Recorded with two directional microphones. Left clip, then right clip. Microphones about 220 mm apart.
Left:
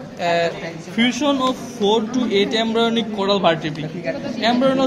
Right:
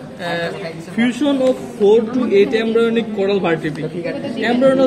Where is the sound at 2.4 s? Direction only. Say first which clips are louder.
Right 4 dB; 35° left (ahead or behind).